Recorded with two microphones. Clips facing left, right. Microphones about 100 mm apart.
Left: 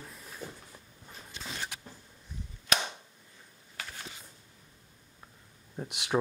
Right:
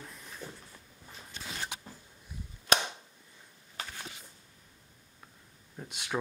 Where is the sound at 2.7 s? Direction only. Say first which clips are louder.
Right 3 dB; 30° right (ahead or behind).